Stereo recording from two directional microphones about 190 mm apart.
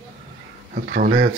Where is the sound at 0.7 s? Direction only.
50° right (ahead or behind).